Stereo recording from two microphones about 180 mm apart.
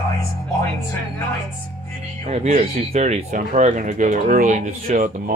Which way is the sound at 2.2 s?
40° right (ahead or behind).